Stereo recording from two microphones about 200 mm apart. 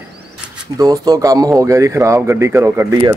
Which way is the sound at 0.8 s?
20° right (ahead or behind).